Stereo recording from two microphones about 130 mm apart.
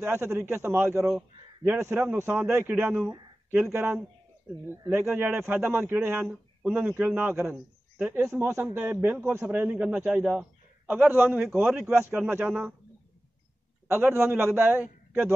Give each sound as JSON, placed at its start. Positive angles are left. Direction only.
{"t": 0.0, "sound": "a man's voice", "side_deg": -20}
{"t": 13.8, "sound": "a man's voice", "side_deg": -20}